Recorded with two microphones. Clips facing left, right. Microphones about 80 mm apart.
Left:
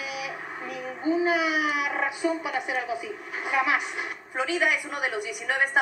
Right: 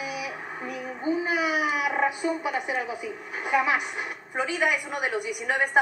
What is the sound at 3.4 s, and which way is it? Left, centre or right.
Speech, centre.